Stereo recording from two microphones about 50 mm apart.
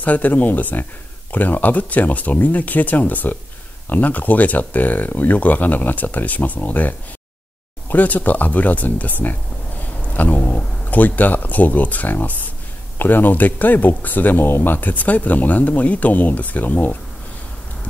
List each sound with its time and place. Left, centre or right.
0.0 s speech: left